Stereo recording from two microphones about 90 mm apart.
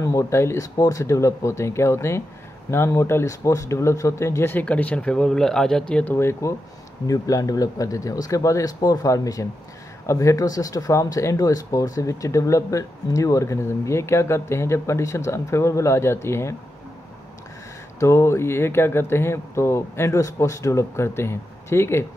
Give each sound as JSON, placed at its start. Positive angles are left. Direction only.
{"t": 0.0, "sound": "speech", "side_deg": 30}
{"t": 4.6, "sound": "speech", "side_deg": 15}
{"t": 6.1, "sound": "speech", "side_deg": 30}
{"t": 7.1, "sound": "speech", "side_deg": 40}
{"t": 17.9, "sound": "speech", "side_deg": 30}